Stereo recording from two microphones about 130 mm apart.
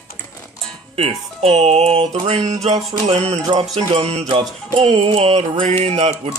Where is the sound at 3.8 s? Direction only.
45° right (ahead or behind).